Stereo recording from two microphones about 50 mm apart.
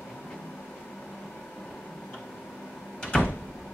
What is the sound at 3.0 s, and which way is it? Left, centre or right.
Door, centre.